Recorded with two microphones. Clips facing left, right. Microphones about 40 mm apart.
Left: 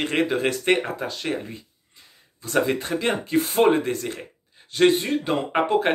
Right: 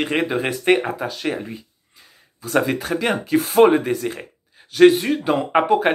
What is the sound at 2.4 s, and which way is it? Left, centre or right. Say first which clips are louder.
A man's voice: right 2 dB; right.